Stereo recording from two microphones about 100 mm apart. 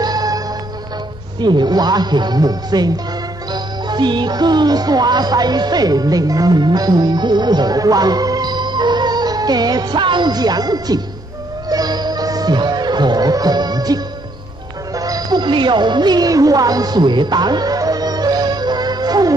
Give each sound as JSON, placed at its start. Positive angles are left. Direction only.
{"t": 0.0, "sound": "music", "side_deg": -40}
{"t": 1.4, "sound": "speech", "side_deg": -45}
{"t": 11.7, "sound": "music", "side_deg": -40}